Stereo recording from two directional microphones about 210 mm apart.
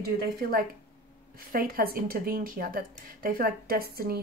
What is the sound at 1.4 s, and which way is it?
Speech, 45° right (ahead or behind).